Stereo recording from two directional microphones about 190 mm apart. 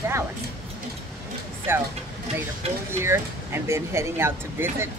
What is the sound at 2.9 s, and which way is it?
Speech, 15° right (ahead or behind).